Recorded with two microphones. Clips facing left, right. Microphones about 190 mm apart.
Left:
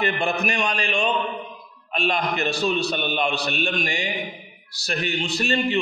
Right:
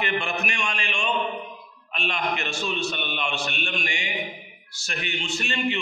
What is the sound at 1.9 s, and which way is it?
A man's voice, 35° left (ahead or behind).